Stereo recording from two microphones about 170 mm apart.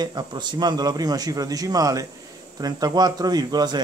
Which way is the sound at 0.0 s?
25° right (ahead or behind).